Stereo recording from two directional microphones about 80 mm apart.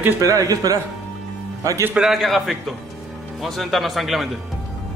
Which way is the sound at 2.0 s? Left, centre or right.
Centre.